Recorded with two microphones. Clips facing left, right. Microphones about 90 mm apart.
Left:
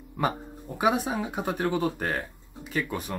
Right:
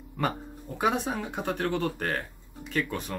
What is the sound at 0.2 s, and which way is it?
Speech, 10° left (ahead or behind).